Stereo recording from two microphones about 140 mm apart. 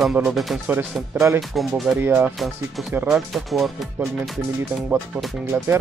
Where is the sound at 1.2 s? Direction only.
15° right (ahead or behind).